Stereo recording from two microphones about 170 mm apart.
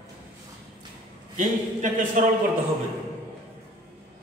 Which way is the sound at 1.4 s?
50° right (ahead or behind).